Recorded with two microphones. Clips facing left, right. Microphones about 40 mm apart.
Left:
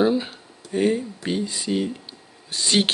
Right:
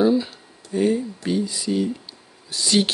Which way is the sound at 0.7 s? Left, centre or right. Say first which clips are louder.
Right 1 dB; left.